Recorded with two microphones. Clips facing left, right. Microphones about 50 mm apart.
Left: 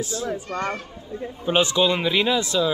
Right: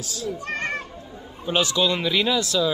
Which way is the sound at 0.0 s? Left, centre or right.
Left.